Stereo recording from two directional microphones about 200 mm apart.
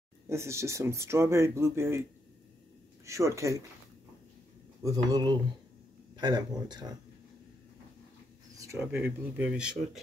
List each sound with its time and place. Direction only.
0.3 s speech: 15° right (ahead or behind)
3.1 s speech: 15° right (ahead or behind)
4.8 s speech: 20° right (ahead or behind)
8.5 s a sound: 15° right (ahead or behind)
8.8 s speech: 10° right (ahead or behind)